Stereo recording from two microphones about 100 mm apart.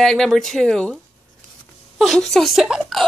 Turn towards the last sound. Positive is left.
turn(degrees=0)  # may be behind; listen again after turning